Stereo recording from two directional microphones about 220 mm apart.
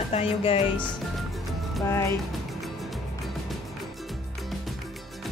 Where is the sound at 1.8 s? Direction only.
10° left (ahead or behind).